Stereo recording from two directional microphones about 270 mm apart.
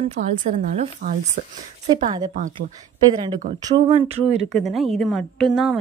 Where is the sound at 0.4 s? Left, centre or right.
Right.